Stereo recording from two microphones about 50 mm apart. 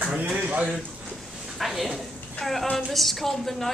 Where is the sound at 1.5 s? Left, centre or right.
Centre.